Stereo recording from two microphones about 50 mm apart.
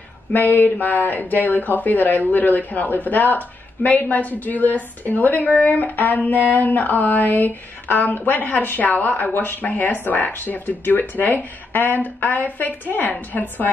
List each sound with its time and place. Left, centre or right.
0.3 s speech: left